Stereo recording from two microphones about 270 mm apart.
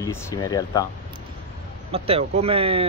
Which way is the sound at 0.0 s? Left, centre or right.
Centre.